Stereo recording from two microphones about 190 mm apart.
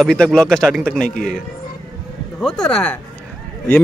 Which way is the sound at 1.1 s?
45° left (ahead or behind).